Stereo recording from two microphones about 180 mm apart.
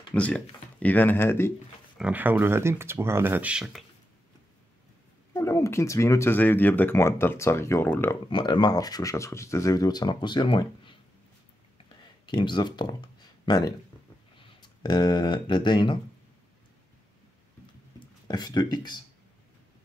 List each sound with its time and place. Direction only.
0.1 s speech: 5° left (ahead or behind)
2.0 s speech: 10° right (ahead or behind)
5.3 s speech: 15° left (ahead or behind)
8.3 s speech: 25° left (ahead or behind)
12.3 s speech: 25° left (ahead or behind)
14.8 s speech: 25° left (ahead or behind)
18.3 s speech: 20° left (ahead or behind)